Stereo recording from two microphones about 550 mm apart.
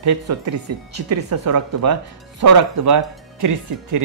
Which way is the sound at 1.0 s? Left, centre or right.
Right.